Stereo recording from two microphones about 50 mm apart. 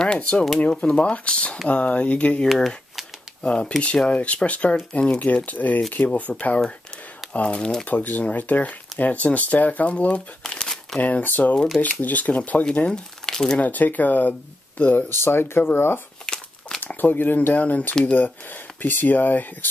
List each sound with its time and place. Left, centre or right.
0.0 s speech: centre
2.4 s speech: centre
3.4 s speech: left
5.2 s speech: left; by 7.8 s centre
7.8 s speech: left
10.4 s crumpling: centre
11.0 s speech: left
13.2 s crumpling: centre
13.6 s speech: left
15.0 s speech: left
16.3 s crumpling: centre
16.8 s speech: left
17.6 s speech: left